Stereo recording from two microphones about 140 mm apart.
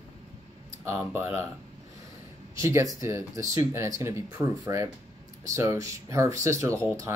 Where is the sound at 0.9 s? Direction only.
15° right (ahead or behind).